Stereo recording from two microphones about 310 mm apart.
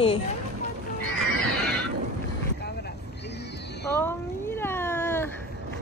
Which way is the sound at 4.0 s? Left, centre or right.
Centre.